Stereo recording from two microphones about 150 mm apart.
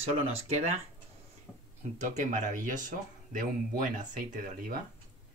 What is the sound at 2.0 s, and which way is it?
Speech, 55° right (ahead or behind).